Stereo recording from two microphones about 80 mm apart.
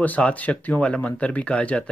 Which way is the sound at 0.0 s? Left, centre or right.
Centre.